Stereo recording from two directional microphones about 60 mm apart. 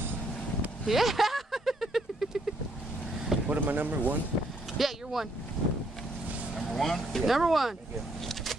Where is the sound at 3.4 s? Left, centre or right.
Right.